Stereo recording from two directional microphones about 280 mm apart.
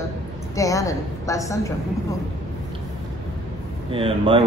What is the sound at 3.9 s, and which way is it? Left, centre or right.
Speech, centre.